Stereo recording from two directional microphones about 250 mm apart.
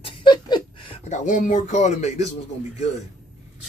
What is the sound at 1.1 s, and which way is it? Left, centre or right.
Speech, left.